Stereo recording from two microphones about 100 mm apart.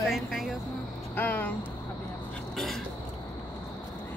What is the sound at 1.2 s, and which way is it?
Speech, 20° left (ahead or behind).